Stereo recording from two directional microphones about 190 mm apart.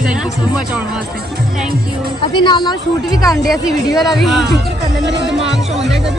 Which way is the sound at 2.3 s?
25° left (ahead or behind).